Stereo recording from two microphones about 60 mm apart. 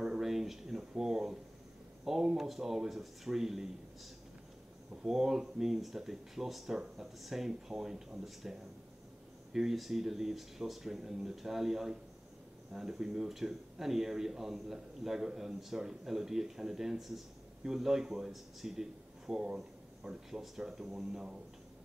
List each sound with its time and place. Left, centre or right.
0.0 s a sound: centre
2.0 s speech: centre
5.0 s speech: centre